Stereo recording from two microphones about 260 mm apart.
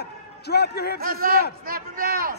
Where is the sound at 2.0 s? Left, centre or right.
Right.